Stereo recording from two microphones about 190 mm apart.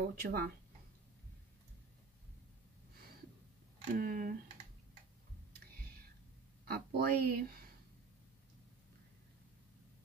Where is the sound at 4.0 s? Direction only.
45° right (ahead or behind).